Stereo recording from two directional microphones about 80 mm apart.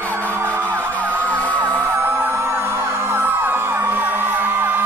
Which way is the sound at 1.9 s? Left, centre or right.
Right.